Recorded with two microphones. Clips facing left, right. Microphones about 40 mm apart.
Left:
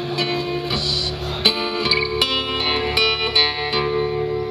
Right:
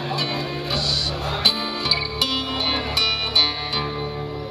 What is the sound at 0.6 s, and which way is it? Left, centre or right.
Music, centre.